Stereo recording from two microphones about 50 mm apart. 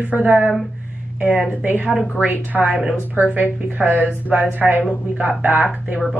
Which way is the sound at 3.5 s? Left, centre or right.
Right.